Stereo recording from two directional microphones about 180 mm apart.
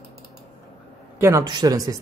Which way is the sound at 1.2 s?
15° right (ahead or behind).